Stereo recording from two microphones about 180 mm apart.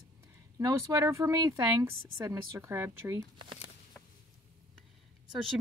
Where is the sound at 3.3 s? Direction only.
25° right (ahead or behind).